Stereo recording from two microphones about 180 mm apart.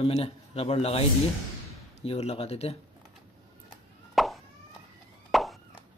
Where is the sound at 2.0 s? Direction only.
35° left (ahead or behind).